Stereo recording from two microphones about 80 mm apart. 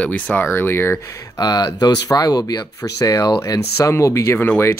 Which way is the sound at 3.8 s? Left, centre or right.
Left.